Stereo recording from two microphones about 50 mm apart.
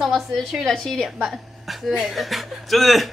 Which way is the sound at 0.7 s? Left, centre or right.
Centre.